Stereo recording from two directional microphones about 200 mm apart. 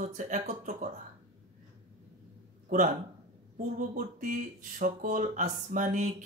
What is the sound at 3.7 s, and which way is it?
Speech, 40° right (ahead or behind).